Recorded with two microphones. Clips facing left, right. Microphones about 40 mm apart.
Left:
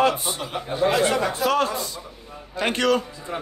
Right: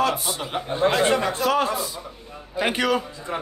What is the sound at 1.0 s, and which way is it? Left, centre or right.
Speech, right.